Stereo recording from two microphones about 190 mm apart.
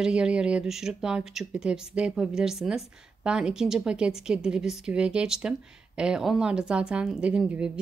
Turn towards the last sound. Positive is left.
turn(degrees=-5)  # may be behind; listen again after turning